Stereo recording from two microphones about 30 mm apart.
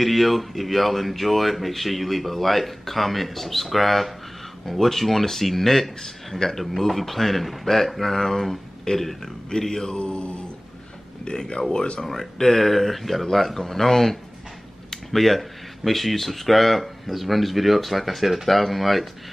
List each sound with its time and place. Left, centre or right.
0.0 s speech: centre
6.6 s speech: centre
8.9 s speech: left
9.9 s mantra: left
11.7 s speech: left
12.1 s speech: centre